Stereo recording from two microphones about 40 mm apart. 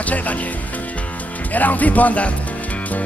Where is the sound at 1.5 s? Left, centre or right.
Left.